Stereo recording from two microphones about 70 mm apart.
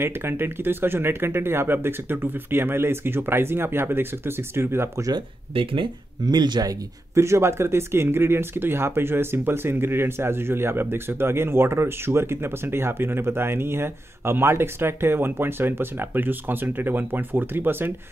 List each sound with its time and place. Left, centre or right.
0.0 s speech: right
6.2 s speech: right
7.2 s speech: right